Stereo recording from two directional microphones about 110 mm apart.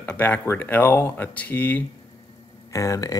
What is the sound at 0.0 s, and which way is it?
Speech, 15° left (ahead or behind).